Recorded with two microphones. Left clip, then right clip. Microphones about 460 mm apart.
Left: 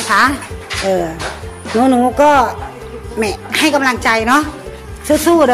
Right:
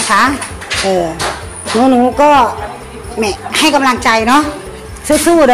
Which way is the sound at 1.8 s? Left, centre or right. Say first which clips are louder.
Right 2 dB; left.